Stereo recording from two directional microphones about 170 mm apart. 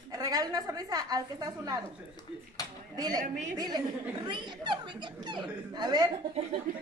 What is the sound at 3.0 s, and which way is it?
A woman's voice, 25° right (ahead or behind).